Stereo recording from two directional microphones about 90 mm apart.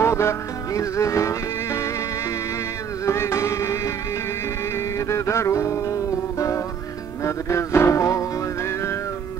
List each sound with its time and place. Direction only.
0.0 s music: 30° left (ahead or behind)
3.1 s music: 30° left (ahead or behind)
7.2 s music: 30° left (ahead or behind)